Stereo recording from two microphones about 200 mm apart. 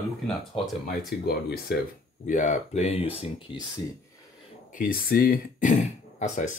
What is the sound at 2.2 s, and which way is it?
Speech, 40° left (ahead or behind).